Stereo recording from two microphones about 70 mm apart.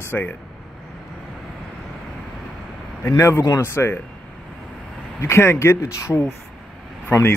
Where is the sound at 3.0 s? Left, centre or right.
Left.